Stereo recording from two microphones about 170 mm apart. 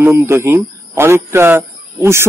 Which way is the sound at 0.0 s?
15° right (ahead or behind).